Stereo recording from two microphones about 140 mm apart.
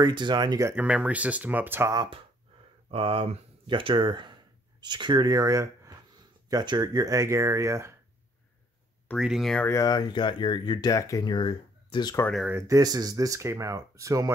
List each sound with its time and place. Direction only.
0.0 s speech: 30° right (ahead or behind)
0.7 s speech: 10° right (ahead or behind)
2.9 s speech: 45° right (ahead or behind); by 7.9 s 20° right (ahead or behind)
9.2 s speech: centre (ahead or behind)
9.7 s speech: 25° left (ahead or behind)
12.4 s speech: 20° right (ahead or behind)